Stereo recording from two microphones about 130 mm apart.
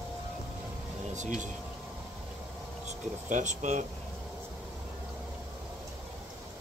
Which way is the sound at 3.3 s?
70° right (ahead or behind).